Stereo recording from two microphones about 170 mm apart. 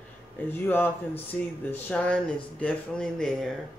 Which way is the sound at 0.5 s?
10° left (ahead or behind).